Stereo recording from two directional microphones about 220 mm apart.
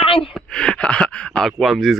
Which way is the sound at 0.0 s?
25° left (ahead or behind).